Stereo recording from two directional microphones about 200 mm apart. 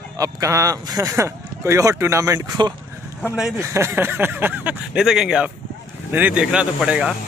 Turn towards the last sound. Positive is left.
turn(degrees=-5)  # may be behind; listen again after turning